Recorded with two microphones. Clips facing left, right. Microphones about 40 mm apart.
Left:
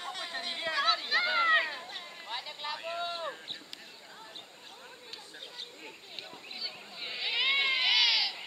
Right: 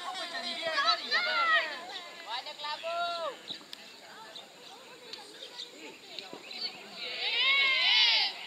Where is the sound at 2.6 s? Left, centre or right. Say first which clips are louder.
Even; left.